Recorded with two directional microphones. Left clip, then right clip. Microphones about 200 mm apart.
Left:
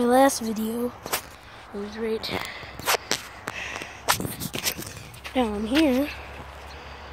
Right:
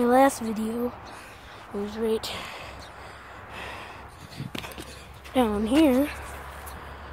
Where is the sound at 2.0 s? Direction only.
10° right (ahead or behind).